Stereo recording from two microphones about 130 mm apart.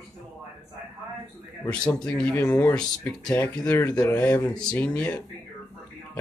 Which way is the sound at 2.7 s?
5° left (ahead or behind).